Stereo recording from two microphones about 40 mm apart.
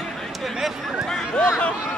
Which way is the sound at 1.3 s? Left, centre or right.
Left.